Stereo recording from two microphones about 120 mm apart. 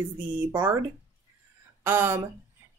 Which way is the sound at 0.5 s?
30° right (ahead or behind).